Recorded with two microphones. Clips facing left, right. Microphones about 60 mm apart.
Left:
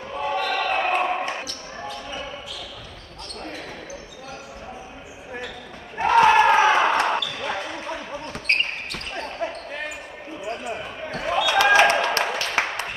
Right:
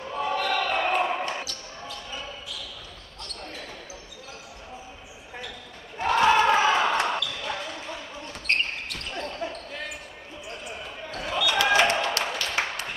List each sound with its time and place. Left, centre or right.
0.1 s basketball bounce: centre
5.9 s basketball bounce: left